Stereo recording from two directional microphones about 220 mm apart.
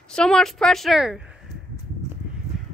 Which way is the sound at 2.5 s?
Centre (ahead or behind).